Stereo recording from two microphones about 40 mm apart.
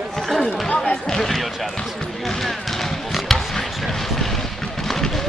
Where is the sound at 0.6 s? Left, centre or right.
Left.